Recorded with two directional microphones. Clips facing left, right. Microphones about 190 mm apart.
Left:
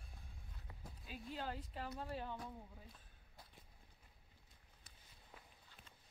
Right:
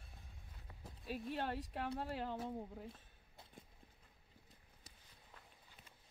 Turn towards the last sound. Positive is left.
turn(degrees=-35)  # may be behind; listen again after turning